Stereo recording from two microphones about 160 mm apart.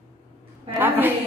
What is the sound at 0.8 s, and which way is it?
Speech, 10° right (ahead or behind).